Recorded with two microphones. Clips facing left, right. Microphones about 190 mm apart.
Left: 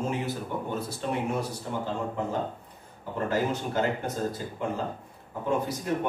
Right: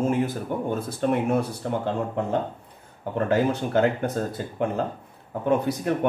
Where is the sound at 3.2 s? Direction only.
65° right (ahead or behind).